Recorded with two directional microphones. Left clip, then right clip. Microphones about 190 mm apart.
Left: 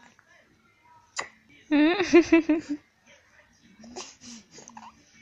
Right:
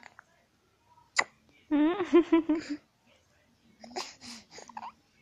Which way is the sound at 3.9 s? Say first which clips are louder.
Right 2 dB; 25° right (ahead or behind).